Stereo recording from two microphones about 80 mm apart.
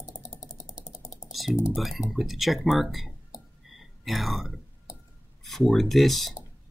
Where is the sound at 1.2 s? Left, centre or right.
Centre.